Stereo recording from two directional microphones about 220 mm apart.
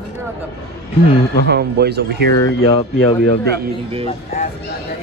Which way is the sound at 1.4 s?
50° right (ahead or behind).